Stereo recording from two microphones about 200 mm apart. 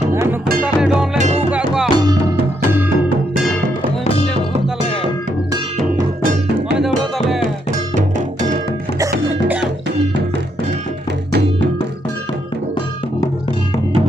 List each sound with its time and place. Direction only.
0.1 s music: 15° right (ahead or behind)
0.7 s music: 5° right (ahead or behind)
4.0 s music: 30° left (ahead or behind)
6.8 s music: centre (ahead or behind)
9.3 s music: 10° right (ahead or behind)